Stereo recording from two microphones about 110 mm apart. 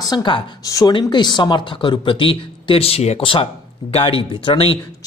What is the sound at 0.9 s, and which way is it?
Speech, 45° left (ahead or behind).